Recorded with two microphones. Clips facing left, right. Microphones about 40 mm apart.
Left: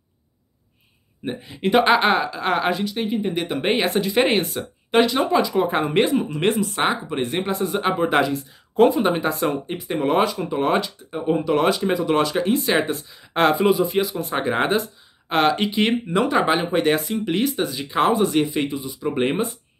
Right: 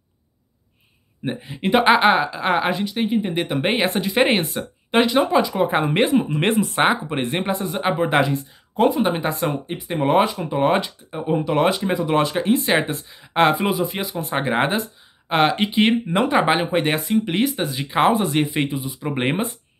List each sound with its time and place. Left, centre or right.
1.2 s speech: centre
6.3 s speech: right
7.3 s speech: centre
11.1 s speech: centre; by 19.4 s right